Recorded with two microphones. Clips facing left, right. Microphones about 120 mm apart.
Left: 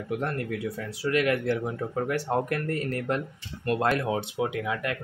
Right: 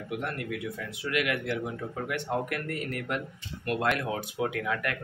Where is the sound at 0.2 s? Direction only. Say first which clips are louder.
Left 4 dB; 35° left (ahead or behind).